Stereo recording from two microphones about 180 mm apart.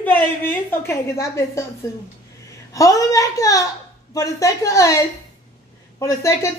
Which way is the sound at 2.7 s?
20° left (ahead or behind).